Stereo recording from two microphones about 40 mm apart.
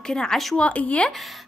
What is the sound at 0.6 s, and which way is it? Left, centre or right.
Speech, left.